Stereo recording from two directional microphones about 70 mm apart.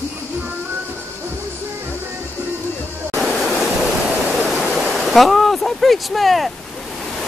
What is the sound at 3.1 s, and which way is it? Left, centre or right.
Waterfall, centre.